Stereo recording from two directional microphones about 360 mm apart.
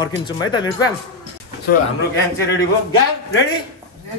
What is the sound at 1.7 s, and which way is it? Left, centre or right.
Speech, left.